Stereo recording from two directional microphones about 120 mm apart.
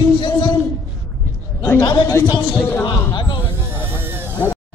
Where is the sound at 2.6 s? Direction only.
15° left (ahead or behind).